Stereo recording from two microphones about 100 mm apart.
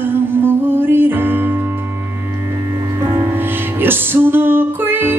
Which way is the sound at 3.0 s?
25° right (ahead or behind).